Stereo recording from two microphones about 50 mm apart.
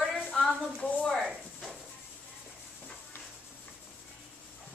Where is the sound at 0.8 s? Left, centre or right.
Left.